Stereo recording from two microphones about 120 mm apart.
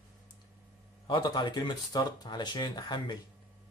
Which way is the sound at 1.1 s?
40° left (ahead or behind).